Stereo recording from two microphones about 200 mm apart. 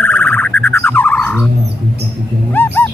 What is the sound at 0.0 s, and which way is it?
Bird, 10° left (ahead or behind).